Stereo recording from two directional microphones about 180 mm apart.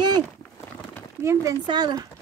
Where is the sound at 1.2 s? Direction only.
15° right (ahead or behind).